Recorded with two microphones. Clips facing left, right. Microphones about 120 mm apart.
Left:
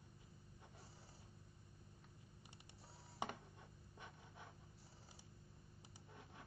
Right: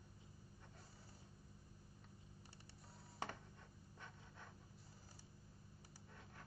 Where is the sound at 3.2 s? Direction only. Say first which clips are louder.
Left 2 dB; 15° left (ahead or behind).